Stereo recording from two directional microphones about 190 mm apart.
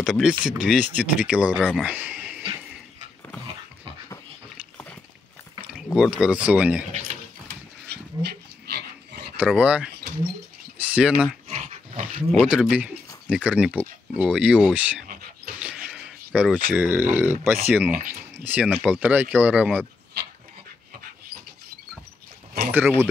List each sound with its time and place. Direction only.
0.0 s speech: 5° right (ahead or behind)
1.6 s speech: 5° left (ahead or behind)
1.9 s a sound: 10° right (ahead or behind)
5.9 s speech: 5° right (ahead or behind)
7.9 s dog: 60° right (ahead or behind)
9.4 s speech: 5° right (ahead or behind)
11.4 s dog: 35° right (ahead or behind)
12.3 s speech: 5° right (ahead or behind)
15.6 s a sound: 5° right (ahead or behind)
16.3 s speech: 5° right (ahead or behind)
22.7 s speech: 10° right (ahead or behind)